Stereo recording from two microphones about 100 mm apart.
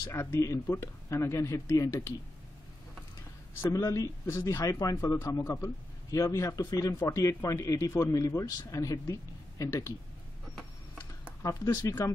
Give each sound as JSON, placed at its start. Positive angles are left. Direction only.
{"t": 0.0, "sound": "speech", "side_deg": 30}
{"t": 3.7, "sound": "speech", "side_deg": 35}
{"t": 11.4, "sound": "speech", "side_deg": 35}